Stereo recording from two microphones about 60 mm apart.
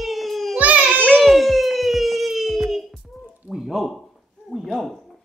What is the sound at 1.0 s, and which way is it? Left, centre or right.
Music, centre.